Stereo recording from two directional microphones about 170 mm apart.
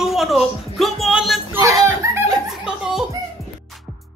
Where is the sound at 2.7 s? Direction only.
5° right (ahead or behind).